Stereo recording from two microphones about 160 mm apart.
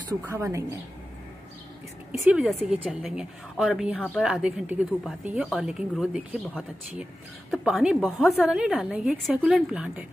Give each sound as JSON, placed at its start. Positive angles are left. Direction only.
{"t": 0.2, "sound": "a woman's voice", "side_deg": -15}
{"t": 2.3, "sound": "a woman's voice", "side_deg": -5}
{"t": 7.5, "sound": "a woman's voice", "side_deg": -5}